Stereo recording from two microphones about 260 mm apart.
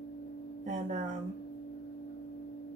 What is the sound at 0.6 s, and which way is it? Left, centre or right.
Speech, right.